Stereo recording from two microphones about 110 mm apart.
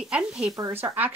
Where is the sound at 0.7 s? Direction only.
20° right (ahead or behind).